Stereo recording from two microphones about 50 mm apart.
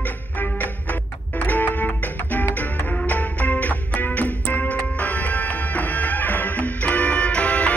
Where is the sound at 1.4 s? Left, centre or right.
Left.